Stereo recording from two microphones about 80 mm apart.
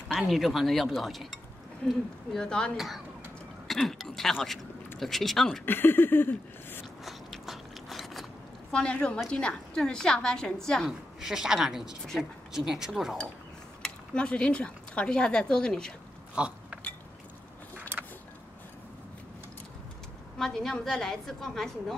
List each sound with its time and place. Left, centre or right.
0.2 s a woman's voice: centre
5.7 s a sound: left
7.1 s biting: centre
8.7 s a woman's voice: centre
10.9 s a woman's voice: centre
13.8 s speech: centre
16.3 s a sound: centre
20.3 s a woman's voice: centre